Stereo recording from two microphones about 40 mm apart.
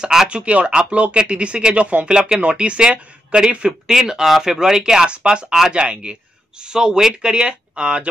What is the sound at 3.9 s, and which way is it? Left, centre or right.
Speech, centre.